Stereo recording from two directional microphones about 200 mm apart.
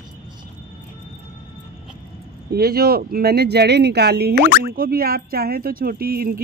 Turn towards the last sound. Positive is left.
turn(degrees=-50)  # may be behind; listen again after turning